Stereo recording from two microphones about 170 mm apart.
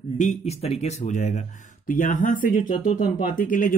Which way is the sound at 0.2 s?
40° left (ahead or behind).